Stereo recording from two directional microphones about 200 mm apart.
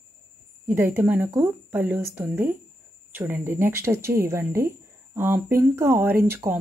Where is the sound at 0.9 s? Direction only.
10° right (ahead or behind).